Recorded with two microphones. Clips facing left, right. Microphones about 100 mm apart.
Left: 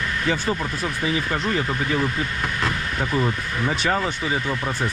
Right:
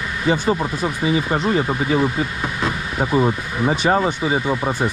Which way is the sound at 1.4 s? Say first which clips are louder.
Right 5 dB; 25° right (ahead or behind).